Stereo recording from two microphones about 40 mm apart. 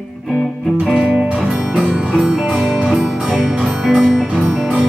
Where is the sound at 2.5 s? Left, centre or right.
Centre.